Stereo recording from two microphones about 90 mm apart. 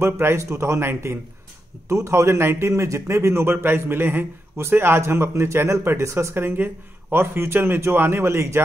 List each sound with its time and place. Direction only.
0.0 s a man's voice: 30° right (ahead or behind)